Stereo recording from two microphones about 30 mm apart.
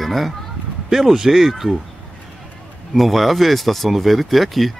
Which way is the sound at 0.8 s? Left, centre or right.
Centre.